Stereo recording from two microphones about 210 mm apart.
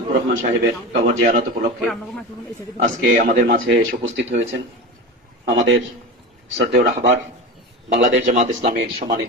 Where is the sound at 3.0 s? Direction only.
40° right (ahead or behind).